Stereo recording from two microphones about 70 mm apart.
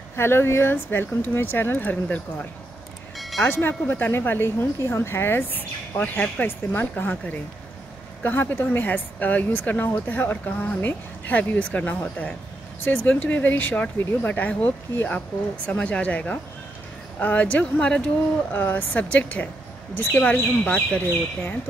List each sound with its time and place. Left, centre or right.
0.1 s speech: left; by 2.4 s centre
3.4 s speech: left
5.9 s speech: left
18.5 s speech: left